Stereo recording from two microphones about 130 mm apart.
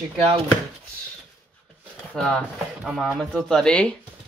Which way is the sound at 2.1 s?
5° left (ahead or behind).